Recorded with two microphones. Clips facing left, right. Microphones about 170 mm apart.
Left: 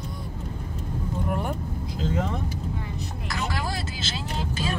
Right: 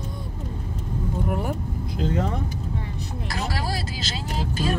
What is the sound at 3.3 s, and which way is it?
Vehicle, 35° right (ahead or behind).